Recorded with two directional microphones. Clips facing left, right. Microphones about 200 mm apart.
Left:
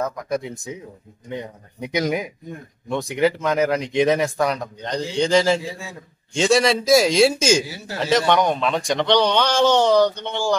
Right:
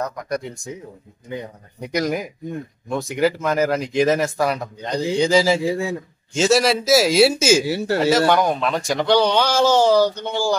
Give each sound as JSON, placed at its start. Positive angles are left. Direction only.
{"t": 0.0, "sound": "speech", "side_deg": 0}
{"t": 7.6, "sound": "speech", "side_deg": -70}
{"t": 8.0, "sound": "speech", "side_deg": -5}